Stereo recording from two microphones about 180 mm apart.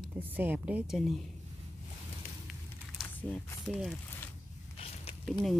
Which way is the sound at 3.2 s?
10° left (ahead or behind).